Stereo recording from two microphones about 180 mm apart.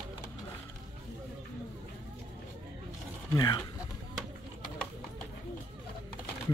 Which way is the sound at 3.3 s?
20° left (ahead or behind).